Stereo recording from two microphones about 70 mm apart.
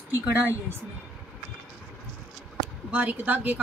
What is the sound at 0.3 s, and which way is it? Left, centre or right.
Speech, right.